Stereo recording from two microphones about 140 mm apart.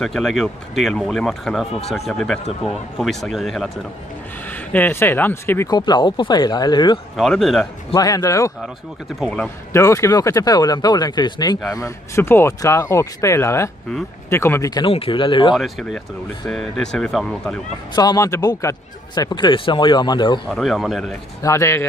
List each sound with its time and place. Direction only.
0.0 s speech: centre (ahead or behind)
4.5 s speech: 10° left (ahead or behind)
5.7 s speech: 30° left (ahead or behind)
7.2 s speech: centre (ahead or behind)
7.9 s speech: 25° left (ahead or behind)
9.2 s speech: 5° left (ahead or behind)
9.7 s speech: 20° left (ahead or behind)
11.7 s speech: 20° left (ahead or behind)
14.9 s speech: 40° left (ahead or behind)
15.5 s speech: centre (ahead or behind)
17.9 s speech: 25° left (ahead or behind)
20.4 s speech: centre (ahead or behind)
21.4 s speech: 20° left (ahead or behind)